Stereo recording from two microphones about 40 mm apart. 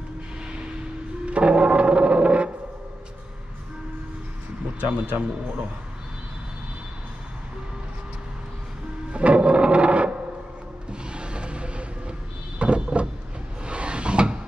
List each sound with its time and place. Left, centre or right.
1.2 s music: right
4.7 s a man's voice: right
9.1 s a sound: right
10.9 s mechanisms: right
12.5 s a sound: right
13.7 s drawer open or close: right